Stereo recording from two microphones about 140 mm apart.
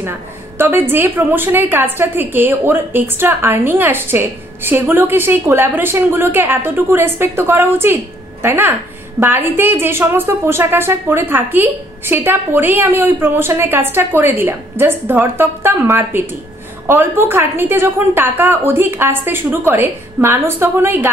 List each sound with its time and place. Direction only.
0.6 s a woman's voice: 15° right (ahead or behind)